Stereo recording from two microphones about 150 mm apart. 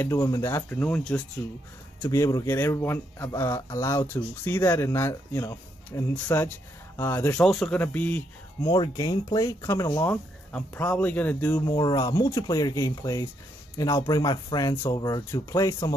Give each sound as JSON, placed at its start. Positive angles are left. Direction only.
{"t": 0.0, "sound": "speech", "side_deg": 20}
{"t": 2.0, "sound": "speech", "side_deg": 20}
{"t": 8.6, "sound": "speech", "side_deg": 25}
{"t": 11.6, "sound": "speech", "side_deg": 30}